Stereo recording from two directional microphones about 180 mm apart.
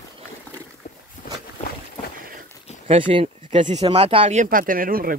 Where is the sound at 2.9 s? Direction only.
30° right (ahead or behind); by 5.2 s 50° right (ahead or behind).